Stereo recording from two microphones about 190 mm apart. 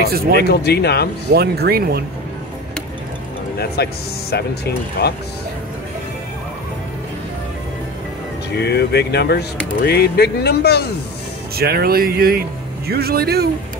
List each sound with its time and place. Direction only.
0.0 s speech: 55° right (ahead or behind)
0.4 s speech: 60° left (ahead or behind)
1.3 s speech: 55° right (ahead or behind)
3.5 s speech: 55° left (ahead or behind)
8.5 s speech: 60° left (ahead or behind)
11.5 s speech: 55° right (ahead or behind)